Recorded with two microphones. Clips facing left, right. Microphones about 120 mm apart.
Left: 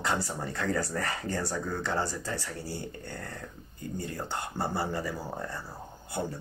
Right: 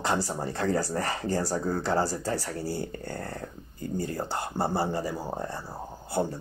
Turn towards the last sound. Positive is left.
turn(degrees=-35)  # may be behind; listen again after turning